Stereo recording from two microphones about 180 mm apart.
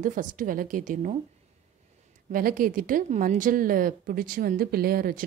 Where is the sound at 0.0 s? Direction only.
45° right (ahead or behind).